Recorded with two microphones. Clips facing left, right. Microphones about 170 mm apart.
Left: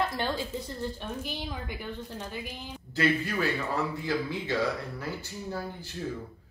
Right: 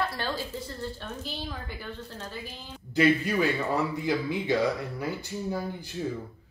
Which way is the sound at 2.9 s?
15° right (ahead or behind).